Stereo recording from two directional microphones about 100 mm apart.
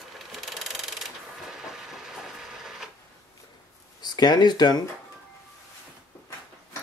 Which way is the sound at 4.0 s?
45° left (ahead or behind).